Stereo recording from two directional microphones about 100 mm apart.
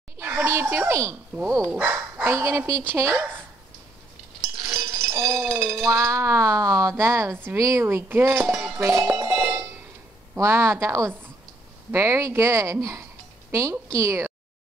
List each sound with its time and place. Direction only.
0.2 s a sound: 20° right (ahead or behind)
1.4 s a woman's voice: 35° right (ahead or behind)
1.8 s bow-wow: 15° right (ahead or behind)
2.2 s speech: 30° right (ahead or behind)
4.6 s sheep: 30° right (ahead or behind)
5.3 s chink: 25° right (ahead or behind)
5.9 s a woman's voice: 30° right (ahead or behind)
8.7 s cowbell: 30° right (ahead or behind)
9.4 s a sound: 30° right (ahead or behind)
10.3 s a woman's voice: 25° right (ahead or behind)